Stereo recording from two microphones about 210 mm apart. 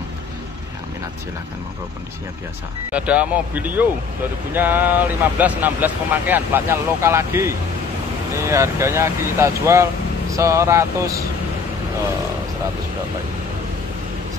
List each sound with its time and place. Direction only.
2.9 s speech: 5° right (ahead or behind)